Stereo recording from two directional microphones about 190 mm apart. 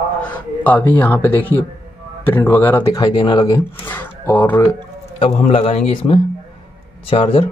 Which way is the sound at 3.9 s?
10° left (ahead or behind).